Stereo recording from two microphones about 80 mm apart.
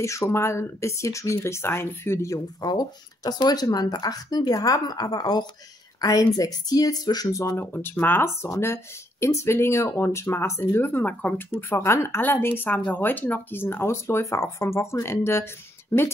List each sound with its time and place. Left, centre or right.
0.0 s speech: left
2.3 s a woman's voice: left
7.6 s speech: left
11.7 s speech: left